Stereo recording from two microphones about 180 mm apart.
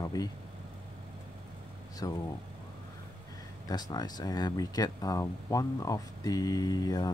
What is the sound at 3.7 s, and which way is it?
Speech, 20° left (ahead or behind).